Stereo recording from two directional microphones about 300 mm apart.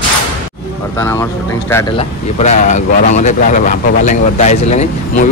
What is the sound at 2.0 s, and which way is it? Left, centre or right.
Speech, left.